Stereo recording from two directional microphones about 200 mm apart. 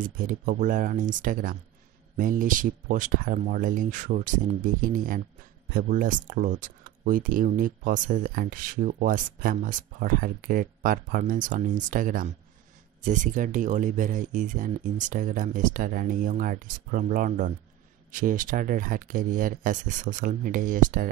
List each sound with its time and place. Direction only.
0.0 s speech: 40° right (ahead or behind)